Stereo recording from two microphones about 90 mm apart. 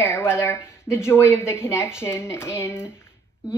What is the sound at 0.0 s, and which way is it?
A woman's voice, 25° left (ahead or behind).